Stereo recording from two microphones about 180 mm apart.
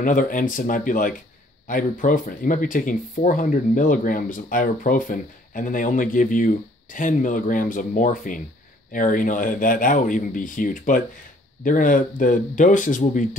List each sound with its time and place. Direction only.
0.0 s speech: 45° left (ahead or behind)